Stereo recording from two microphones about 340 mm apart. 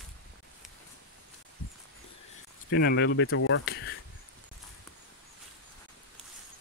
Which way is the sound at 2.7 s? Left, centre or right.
Left.